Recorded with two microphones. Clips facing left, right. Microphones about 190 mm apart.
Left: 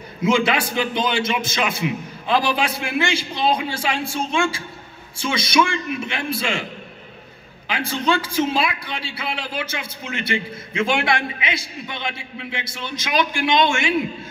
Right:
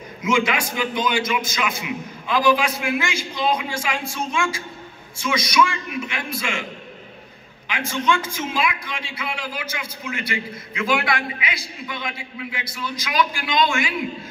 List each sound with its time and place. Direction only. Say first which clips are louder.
0.2 s a man's voice: left 3 dB; 30° left (ahead or behind)
7.6 s a woman's voice: left 1 dB; 35° left (ahead or behind)